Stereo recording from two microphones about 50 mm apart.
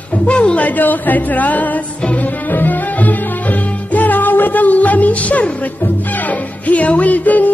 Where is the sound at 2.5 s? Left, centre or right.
Left.